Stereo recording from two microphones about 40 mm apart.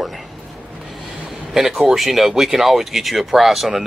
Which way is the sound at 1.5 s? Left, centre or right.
Centre.